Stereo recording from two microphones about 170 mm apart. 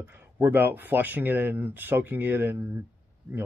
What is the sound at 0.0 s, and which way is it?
Speech, 10° right (ahead or behind).